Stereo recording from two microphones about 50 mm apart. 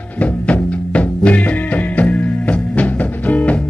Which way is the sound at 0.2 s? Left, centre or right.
Left.